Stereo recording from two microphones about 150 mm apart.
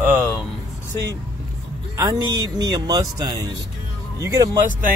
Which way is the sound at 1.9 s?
25° right (ahead or behind).